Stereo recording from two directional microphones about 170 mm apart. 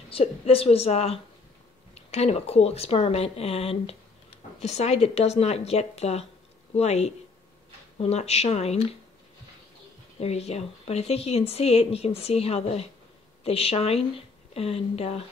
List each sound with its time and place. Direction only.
0.1 s speech: 35° left (ahead or behind)
10.1 s a woman's voice: 40° left (ahead or behind)